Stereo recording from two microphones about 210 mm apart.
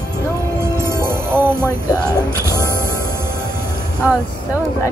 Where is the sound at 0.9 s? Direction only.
10° right (ahead or behind).